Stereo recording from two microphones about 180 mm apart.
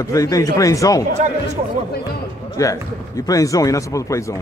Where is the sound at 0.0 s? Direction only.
20° left (ahead or behind).